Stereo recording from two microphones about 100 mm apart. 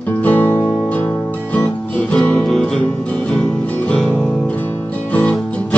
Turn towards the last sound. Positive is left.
turn(degrees=15)  # may be behind; listen again after turning